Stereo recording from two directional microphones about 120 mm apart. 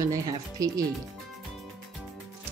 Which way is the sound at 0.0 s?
30° right (ahead or behind).